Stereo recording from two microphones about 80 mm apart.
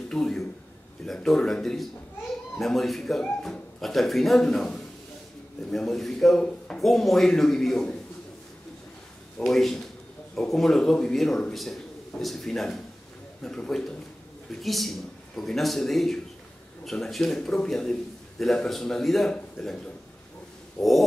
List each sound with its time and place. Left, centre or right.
0.1 s a sound: centre
1.0 s a man's voice: centre
9.4 s a man's voice: centre